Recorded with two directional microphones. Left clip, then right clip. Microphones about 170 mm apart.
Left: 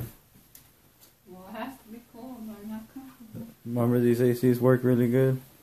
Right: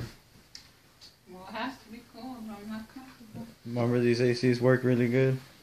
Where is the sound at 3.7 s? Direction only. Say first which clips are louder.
Left 2 dB; 15° left (ahead or behind).